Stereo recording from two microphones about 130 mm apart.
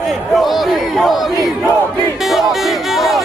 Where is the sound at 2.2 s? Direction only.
Centre (ahead or behind).